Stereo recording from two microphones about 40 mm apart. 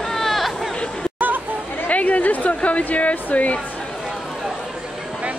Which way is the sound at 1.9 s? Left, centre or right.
Left.